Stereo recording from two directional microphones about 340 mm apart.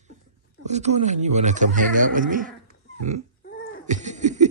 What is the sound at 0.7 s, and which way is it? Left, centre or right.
Speech, centre.